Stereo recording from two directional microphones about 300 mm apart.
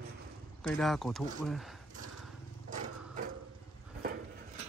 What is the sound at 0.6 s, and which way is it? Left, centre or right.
Speech, centre.